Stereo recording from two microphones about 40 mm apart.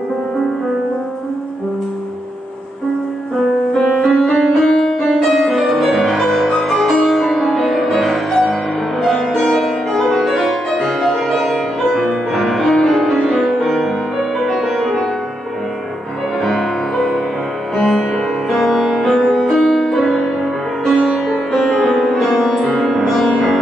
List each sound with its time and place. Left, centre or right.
3.7 s music: centre
16.4 s music: centre
21.5 s music: centre
23.2 s music: centre